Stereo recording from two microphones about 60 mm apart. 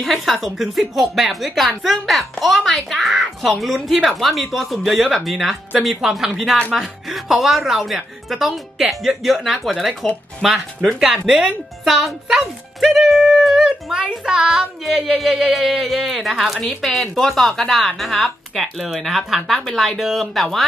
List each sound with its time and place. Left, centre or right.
0.0 s speech: centre
11.1 s a woman's voice: centre